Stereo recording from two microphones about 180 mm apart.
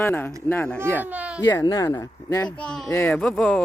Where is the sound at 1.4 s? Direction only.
20° left (ahead or behind).